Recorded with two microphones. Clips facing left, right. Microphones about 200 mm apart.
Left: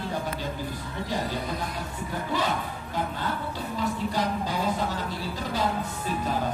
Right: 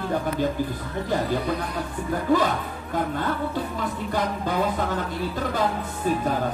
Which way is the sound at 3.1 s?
55° right (ahead or behind).